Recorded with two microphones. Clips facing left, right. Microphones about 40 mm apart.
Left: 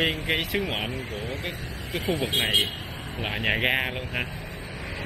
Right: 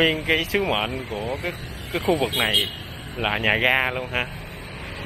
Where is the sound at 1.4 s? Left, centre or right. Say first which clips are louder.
Right 3 dB; right.